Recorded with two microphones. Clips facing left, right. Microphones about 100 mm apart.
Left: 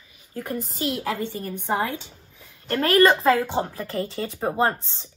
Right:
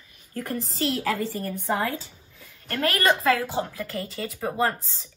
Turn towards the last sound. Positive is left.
turn(degrees=30)  # may be behind; listen again after turning